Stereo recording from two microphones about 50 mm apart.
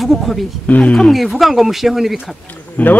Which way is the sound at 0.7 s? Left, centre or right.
Left.